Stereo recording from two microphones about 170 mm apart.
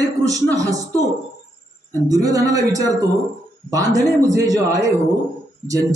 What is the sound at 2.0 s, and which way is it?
A man's voice, 20° right (ahead or behind).